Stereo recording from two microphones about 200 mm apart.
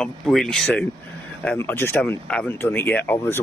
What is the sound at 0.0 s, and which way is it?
Speech, centre (ahead or behind).